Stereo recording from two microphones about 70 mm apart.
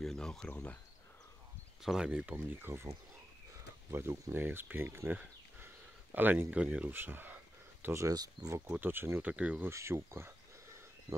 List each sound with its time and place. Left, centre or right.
0.0 s a sound: centre
0.5 s speech: left
1.8 s speech: centre
2.3 s speech: right
3.9 s speech: right
6.5 s speech: centre
6.9 s speech: right
8.1 s speech: right
8.6 s speech: right
9.2 s speech: centre
9.6 s a sound: right